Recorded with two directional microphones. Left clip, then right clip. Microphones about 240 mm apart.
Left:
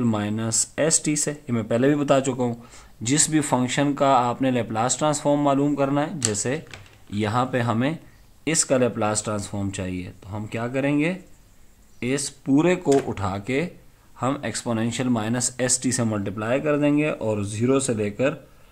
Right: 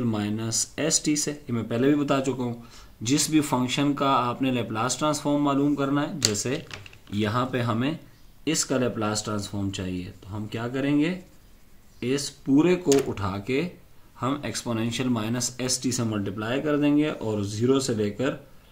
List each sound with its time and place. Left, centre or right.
0.0 s speech: left